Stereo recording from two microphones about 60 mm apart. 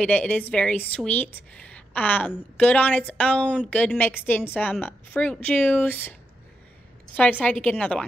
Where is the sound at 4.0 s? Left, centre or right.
Left.